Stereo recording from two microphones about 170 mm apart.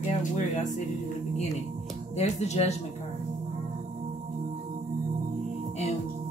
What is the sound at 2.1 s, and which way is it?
Speech, 40° left (ahead or behind).